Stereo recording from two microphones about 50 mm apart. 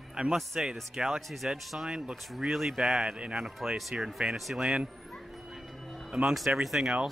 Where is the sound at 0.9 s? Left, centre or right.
Centre.